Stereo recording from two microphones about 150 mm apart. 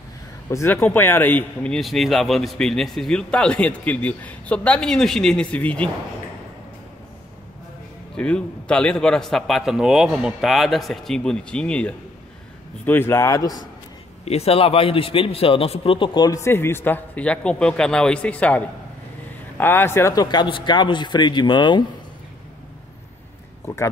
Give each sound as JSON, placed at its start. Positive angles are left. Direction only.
{"t": 0.5, "sound": "speech", "side_deg": 15}
{"t": 8.2, "sound": "a man's voice", "side_deg": 5}
{"t": 14.2, "sound": "a man's voice", "side_deg": 45}
{"t": 19.6, "sound": "a man's voice", "side_deg": 15}
{"t": 23.6, "sound": "speech", "side_deg": 15}